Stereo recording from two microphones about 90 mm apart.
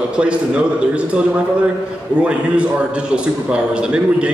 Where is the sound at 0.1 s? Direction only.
10° right (ahead or behind).